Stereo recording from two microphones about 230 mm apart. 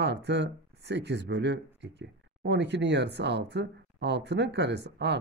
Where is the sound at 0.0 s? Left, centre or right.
Right.